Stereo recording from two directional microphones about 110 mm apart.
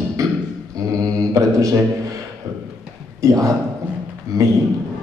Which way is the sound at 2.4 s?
30° right (ahead or behind).